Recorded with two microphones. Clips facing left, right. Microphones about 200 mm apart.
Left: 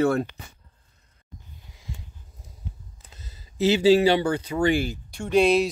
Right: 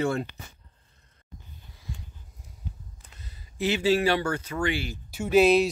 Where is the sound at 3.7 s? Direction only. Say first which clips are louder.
Left 6 dB; 30° left (ahead or behind).